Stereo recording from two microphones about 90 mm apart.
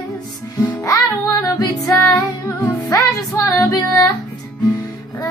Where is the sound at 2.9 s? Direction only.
40° left (ahead or behind).